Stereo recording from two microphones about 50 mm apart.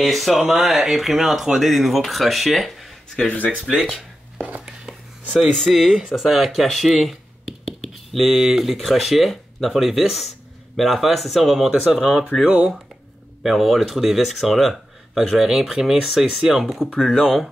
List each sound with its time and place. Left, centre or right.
0.0 s speech: centre
4.4 s speech: right
4.6 s a sound: centre
5.7 s speech: centre
12.4 s speech: right
13.4 s speech: centre